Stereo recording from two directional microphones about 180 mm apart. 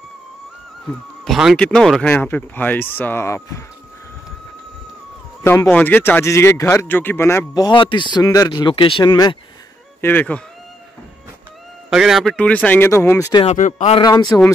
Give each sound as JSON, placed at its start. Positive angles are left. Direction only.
{"t": 1.2, "sound": "speech", "side_deg": 0}
{"t": 5.4, "sound": "speech", "side_deg": 15}
{"t": 10.0, "sound": "speech", "side_deg": 10}
{"t": 11.9, "sound": "speech", "side_deg": 0}
{"t": 13.3, "sound": "speech", "side_deg": 30}
{"t": 13.6, "sound": "speech", "side_deg": 45}
{"t": 13.9, "sound": "speech", "side_deg": 20}